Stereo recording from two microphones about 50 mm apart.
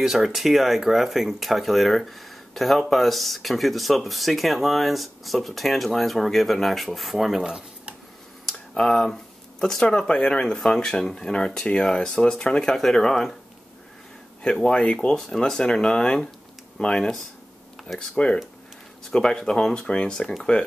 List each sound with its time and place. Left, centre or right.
0.0 s speech: centre
7.4 s a sound: centre
8.5 s speech: centre
14.4 s speech: centre